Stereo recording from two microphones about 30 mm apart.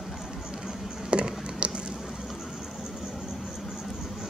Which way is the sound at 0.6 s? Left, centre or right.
Right.